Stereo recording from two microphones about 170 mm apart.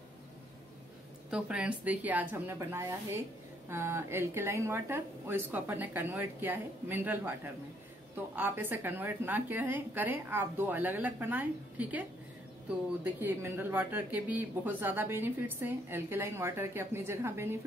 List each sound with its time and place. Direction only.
1.3 s speech: 5° right (ahead or behind)
8.4 s speech: 10° right (ahead or behind)